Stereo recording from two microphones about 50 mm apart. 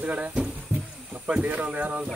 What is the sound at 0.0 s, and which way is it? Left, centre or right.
Speech, right.